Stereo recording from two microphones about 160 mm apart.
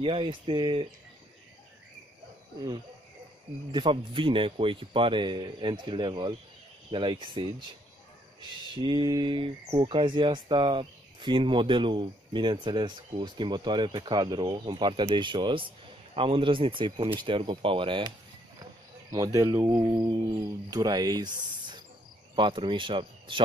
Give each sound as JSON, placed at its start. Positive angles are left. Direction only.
{"t": 0.0, "sound": "speech", "side_deg": -30}
{"t": 3.7, "sound": "speech", "side_deg": -30}
{"t": 19.1, "sound": "speech", "side_deg": -20}